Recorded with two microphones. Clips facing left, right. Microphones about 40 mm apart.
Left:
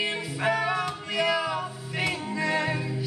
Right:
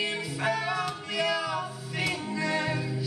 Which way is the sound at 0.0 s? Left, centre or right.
Left.